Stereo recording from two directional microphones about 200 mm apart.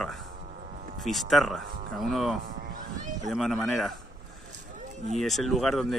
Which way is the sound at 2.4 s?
45° right (ahead or behind).